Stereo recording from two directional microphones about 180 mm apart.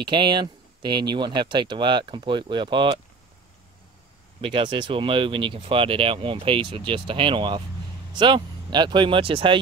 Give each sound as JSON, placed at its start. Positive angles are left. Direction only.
{"t": 0.0, "sound": "speech", "side_deg": -25}
{"t": 4.4, "sound": "speech", "side_deg": -30}